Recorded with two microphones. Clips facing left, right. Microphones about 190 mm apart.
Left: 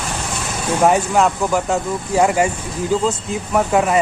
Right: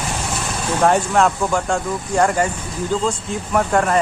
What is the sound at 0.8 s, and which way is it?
Speech, 5° left (ahead or behind).